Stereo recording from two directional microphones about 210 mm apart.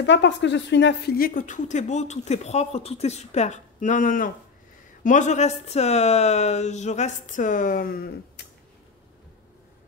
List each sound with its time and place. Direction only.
0.0 s a woman's voice: 55° left (ahead or behind)